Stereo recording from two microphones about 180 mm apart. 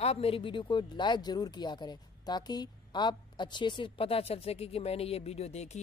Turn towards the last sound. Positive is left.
turn(degrees=35)  # may be behind; listen again after turning